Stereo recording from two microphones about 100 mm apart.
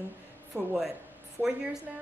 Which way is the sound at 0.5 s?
30° right (ahead or behind).